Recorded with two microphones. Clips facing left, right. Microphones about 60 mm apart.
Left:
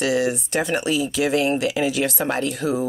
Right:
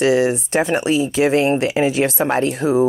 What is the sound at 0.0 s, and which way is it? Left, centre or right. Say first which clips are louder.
Speech: right 5 dB; right.